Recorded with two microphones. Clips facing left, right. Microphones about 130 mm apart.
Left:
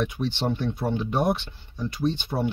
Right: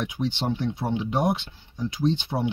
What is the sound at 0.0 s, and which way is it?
Speech, 15° right (ahead or behind).